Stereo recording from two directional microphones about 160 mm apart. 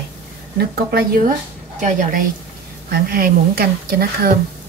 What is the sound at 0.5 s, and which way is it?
Speech, 75° right (ahead or behind).